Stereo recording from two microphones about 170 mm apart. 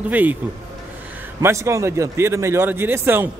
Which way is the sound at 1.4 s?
15° right (ahead or behind).